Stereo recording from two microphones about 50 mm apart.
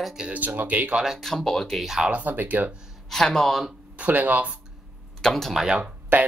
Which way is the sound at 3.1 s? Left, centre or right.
Centre.